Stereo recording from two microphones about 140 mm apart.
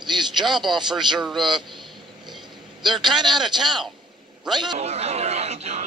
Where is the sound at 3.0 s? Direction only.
30° right (ahead or behind).